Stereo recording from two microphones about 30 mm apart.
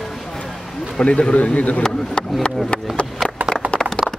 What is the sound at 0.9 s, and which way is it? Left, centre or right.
Speech, left.